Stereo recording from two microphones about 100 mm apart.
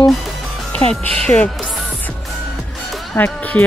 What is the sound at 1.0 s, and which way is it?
Speech, 80° right.